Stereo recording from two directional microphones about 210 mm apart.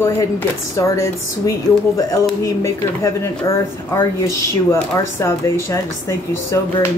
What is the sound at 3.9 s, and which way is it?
Speech, 15° left (ahead or behind).